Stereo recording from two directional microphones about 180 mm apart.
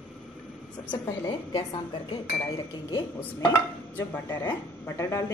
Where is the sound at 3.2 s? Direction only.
10° left (ahead or behind).